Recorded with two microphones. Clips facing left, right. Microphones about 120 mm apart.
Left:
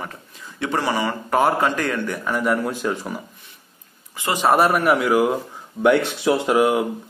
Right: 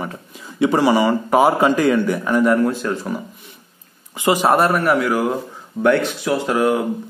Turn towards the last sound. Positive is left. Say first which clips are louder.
# even
turn(degrees=15)  # may be behind; listen again after turning